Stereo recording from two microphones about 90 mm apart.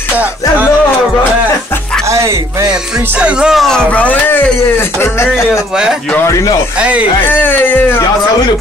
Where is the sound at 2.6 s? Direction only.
10° right (ahead or behind).